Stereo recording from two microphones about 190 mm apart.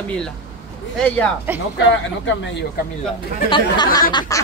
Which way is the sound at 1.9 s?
75° left (ahead or behind).